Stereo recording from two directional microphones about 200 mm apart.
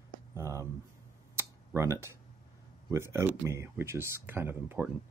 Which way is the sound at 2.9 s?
15° right (ahead or behind).